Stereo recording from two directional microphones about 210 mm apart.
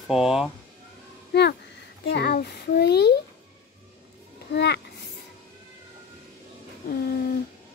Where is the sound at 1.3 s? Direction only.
50° left (ahead or behind).